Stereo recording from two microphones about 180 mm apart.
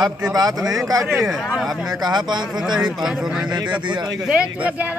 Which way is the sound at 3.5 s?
25° right (ahead or behind).